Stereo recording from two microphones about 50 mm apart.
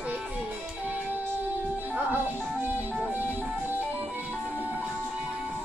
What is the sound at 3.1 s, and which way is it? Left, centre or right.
Music, right.